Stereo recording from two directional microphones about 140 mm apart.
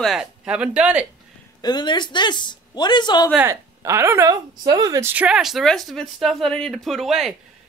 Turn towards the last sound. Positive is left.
turn(degrees=0)  # may be behind; listen again after turning